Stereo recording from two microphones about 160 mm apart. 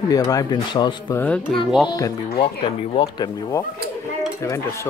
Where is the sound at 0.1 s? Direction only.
20° left (ahead or behind).